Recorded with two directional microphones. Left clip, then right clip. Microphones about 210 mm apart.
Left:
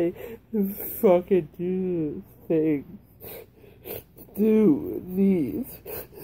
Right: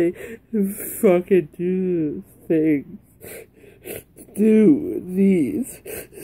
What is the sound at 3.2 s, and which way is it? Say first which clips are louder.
Gasp: right 4 dB; 30° right (ahead or behind).